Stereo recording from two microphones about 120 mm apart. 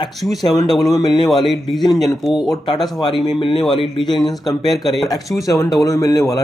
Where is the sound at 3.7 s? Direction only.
45° left (ahead or behind).